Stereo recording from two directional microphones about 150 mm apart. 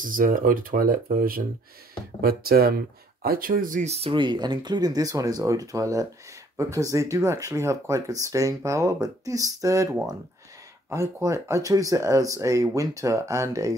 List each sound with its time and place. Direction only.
0.0 s speech: 65° right (ahead or behind)
2.2 s speech: 90° right
3.2 s speech: 75° right (ahead or behind); by 3.9 s 60° right (ahead or behind)
3.9 s speech: 35° right (ahead or behind); by 9.8 s 20° right (ahead or behind)
10.9 s speech: 20° right (ahead or behind)